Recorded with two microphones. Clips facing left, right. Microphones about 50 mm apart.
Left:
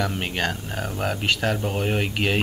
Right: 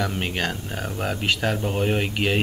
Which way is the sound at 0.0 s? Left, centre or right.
Centre.